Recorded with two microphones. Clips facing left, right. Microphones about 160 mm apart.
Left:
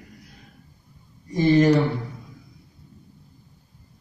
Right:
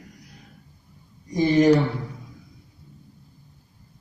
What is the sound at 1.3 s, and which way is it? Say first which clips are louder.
Speech: left 1 dB; 15° right (ahead or behind).